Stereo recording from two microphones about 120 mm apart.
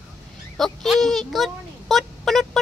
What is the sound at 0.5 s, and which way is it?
Speech, centre (ahead or behind).